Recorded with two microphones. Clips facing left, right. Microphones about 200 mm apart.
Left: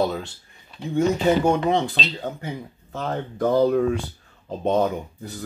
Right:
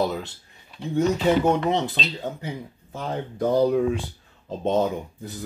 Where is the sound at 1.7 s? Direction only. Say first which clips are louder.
Left 2 dB; 20° right (ahead or behind).